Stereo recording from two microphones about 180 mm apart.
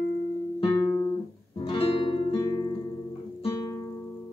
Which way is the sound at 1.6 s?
25° left (ahead or behind).